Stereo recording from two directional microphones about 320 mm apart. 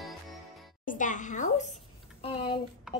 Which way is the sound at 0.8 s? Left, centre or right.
Left.